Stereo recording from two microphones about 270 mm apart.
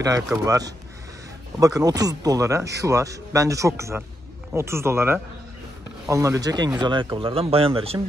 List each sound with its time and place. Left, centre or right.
0.0 s speech: centre